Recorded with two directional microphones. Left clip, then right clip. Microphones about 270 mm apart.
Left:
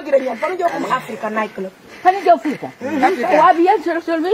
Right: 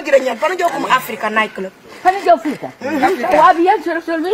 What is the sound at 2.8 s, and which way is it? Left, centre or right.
A woman's voice, centre.